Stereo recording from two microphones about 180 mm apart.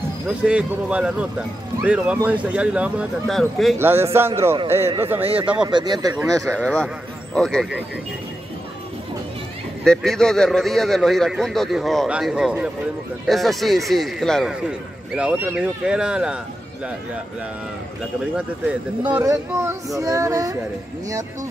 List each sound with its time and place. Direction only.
0.3 s speech: 5° right (ahead or behind)
3.7 s speech: 15° right (ahead or behind)
5.2 s speech: 30° right (ahead or behind)
6.5 s a man's voice: 5° left (ahead or behind)
9.8 s a man's voice: 5° left (ahead or behind)
18.2 s speech: 5° right (ahead or behind)